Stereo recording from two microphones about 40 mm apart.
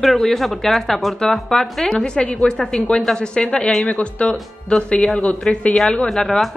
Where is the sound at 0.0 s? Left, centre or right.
Centre.